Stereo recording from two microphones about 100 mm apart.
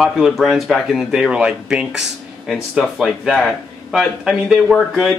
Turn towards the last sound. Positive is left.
turn(degrees=-5)  # may be behind; listen again after turning